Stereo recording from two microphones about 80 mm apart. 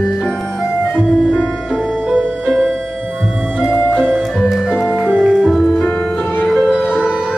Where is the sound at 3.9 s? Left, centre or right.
Centre.